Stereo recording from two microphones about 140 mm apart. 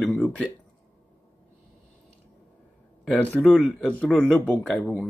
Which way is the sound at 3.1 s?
5° left (ahead or behind).